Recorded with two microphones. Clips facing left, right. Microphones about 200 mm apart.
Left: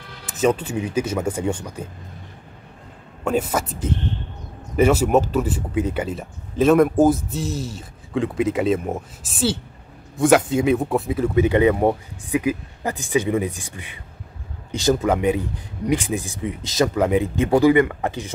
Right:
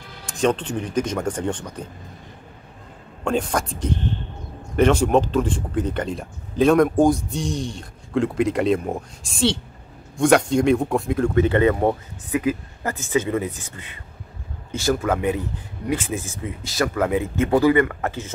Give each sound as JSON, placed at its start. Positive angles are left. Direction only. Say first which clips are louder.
{"t": 0.3, "sound": "speech", "louder": "left 1 dB", "side_deg": 5}
{"t": 3.3, "sound": "speech", "louder": "left 1 dB", "side_deg": 5}